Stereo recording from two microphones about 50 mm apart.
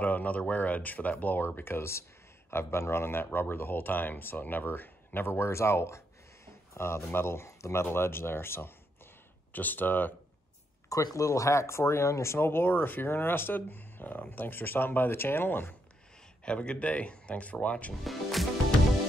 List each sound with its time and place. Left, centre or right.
0.0 s a man's voice: left
7.1 s a man's voice: left
7.8 s speech: left
9.5 s speech: left
10.9 s speech: left
16.4 s speech: left
18.0 s music: centre